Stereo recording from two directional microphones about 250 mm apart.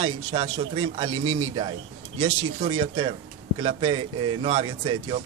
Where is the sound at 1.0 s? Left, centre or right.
Right.